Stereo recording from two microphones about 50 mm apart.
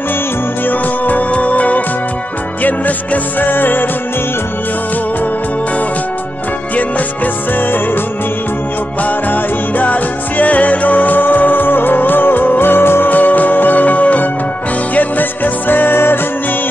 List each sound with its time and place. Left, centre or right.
0.7 s music: left
7.5 s music: left
9.0 s music: left
13.1 s music: left